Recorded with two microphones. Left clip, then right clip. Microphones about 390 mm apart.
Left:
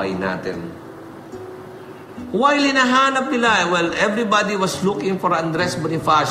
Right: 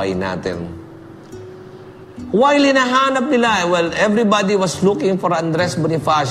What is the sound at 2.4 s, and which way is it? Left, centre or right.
A man's voice, right.